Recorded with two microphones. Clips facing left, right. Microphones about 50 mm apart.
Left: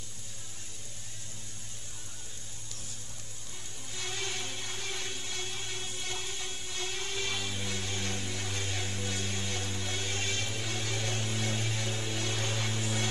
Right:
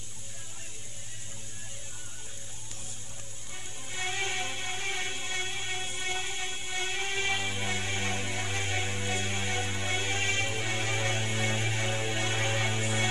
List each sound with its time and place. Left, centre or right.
3.9 s music: right